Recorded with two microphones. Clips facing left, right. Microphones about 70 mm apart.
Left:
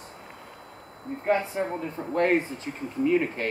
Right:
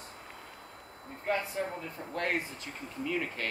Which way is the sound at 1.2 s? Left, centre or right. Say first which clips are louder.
Left 7 dB; left.